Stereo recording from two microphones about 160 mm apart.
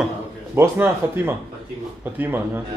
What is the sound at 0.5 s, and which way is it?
Speech, 15° right (ahead or behind).